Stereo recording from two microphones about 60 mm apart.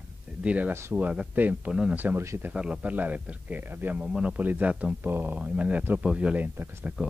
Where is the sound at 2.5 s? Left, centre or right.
Centre.